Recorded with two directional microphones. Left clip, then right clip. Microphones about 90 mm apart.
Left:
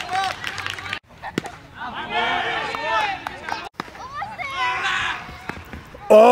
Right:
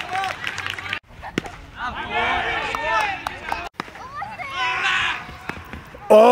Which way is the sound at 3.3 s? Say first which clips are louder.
Right 1 dB; 5° left (ahead or behind).